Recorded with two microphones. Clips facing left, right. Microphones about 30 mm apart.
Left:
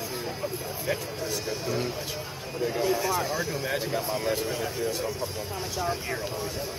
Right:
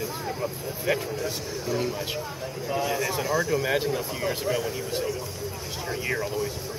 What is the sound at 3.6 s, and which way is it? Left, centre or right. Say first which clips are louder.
Speech: right 5 dB; right.